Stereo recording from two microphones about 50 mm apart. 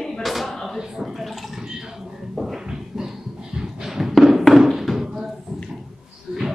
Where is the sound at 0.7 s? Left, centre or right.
Centre.